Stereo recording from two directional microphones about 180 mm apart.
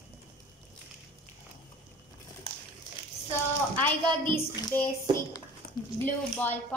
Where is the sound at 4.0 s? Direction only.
25° right (ahead or behind).